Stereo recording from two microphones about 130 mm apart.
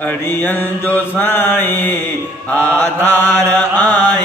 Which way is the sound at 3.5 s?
15° left (ahead or behind).